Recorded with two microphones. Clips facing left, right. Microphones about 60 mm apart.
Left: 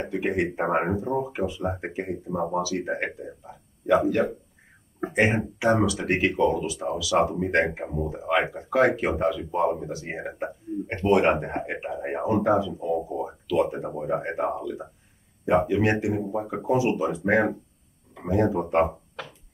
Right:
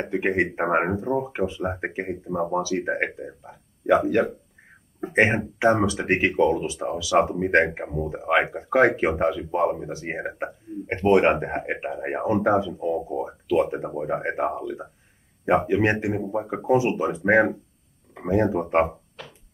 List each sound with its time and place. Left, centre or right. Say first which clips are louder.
0.0 s speech: right 2 dB; right